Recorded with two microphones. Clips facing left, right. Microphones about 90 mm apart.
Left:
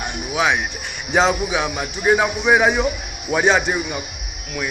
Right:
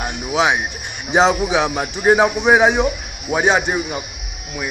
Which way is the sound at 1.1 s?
20° right (ahead or behind).